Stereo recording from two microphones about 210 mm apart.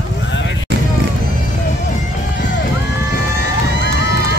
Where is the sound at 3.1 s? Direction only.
50° left (ahead or behind).